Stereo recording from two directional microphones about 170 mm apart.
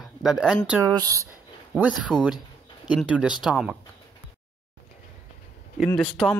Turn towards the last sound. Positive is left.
turn(degrees=0)  # may be behind; listen again after turning